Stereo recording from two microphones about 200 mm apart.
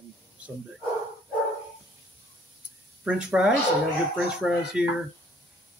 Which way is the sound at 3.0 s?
5° right (ahead or behind).